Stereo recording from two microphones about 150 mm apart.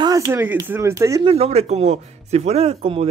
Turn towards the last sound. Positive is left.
turn(degrees=-40)  # may be behind; listen again after turning